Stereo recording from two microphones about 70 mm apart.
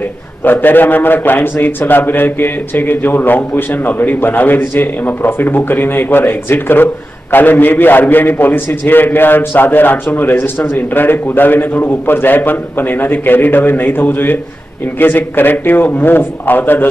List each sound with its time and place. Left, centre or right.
0.4 s a man's voice: left